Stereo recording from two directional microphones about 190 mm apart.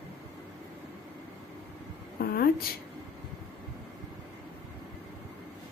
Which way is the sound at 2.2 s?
50° left (ahead or behind).